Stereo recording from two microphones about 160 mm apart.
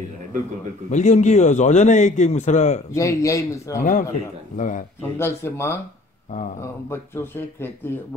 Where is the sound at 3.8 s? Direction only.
60° left (ahead or behind).